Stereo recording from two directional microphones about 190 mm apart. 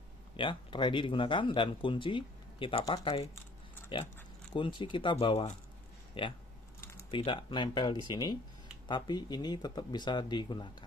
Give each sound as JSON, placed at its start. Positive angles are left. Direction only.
{"t": 0.4, "sound": "speech", "side_deg": 25}
{"t": 4.6, "sound": "speech", "side_deg": 25}
{"t": 6.8, "sound": "typing", "side_deg": 15}
{"t": 7.1, "sound": "speech", "side_deg": 25}